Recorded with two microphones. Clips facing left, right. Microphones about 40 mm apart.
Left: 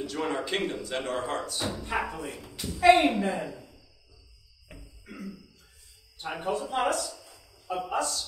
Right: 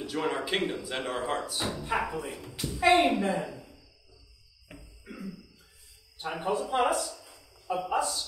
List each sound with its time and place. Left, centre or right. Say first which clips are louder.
0.0 s speech: even; centre
4.6 s a sound: right 1 dB; centre
6.4 s speech: right 1 dB; centre
8.0 s speech: even; centre